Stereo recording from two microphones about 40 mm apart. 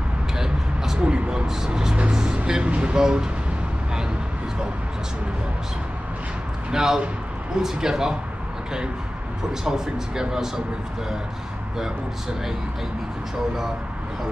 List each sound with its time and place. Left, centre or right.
1.0 s speech: right
2.1 s music: right
2.7 s speech: right
6.7 s a man's voice: centre
9.5 s a man's voice: centre